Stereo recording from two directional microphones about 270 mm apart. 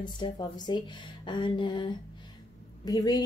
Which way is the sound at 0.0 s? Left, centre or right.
Centre.